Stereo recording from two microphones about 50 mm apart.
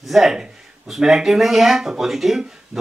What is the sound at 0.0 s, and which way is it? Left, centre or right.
Speech, centre.